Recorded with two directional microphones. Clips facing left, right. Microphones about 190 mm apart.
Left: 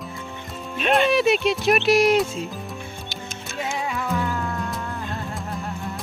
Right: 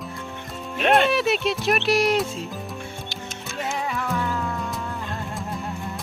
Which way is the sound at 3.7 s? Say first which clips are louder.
Left 1 dB; centre (ahead or behind).